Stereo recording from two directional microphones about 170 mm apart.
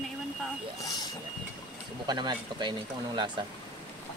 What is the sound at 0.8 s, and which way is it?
Speech, 20° left (ahead or behind).